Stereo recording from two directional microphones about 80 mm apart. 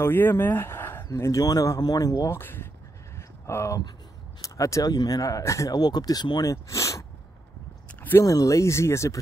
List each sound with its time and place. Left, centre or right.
0.0 s speech: left
2.3 s speech: left
3.2 s a sound: left
4.4 s speech: left
5.8 s speech: left
6.4 s a sound: left
8.2 s speech: left